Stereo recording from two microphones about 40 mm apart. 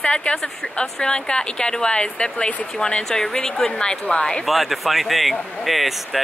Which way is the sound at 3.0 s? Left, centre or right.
Centre.